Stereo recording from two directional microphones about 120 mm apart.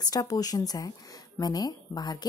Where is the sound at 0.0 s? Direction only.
30° left (ahead or behind).